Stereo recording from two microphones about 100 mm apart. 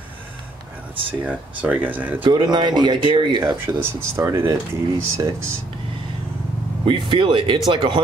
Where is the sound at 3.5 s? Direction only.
25° right (ahead or behind).